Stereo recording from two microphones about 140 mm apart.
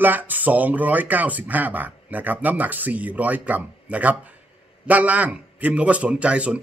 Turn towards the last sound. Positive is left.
turn(degrees=-10)  # may be behind; listen again after turning